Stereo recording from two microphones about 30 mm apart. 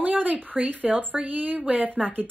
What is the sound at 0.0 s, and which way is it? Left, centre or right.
Speech, right.